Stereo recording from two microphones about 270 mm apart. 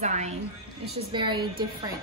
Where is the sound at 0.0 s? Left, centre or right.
Right.